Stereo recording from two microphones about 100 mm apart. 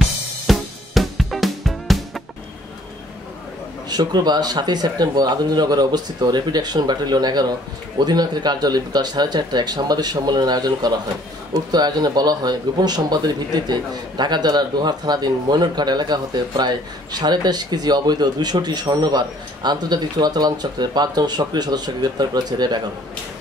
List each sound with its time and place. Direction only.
0.5 s music: centre (ahead or behind)
3.9 s a man's voice: 45° right (ahead or behind)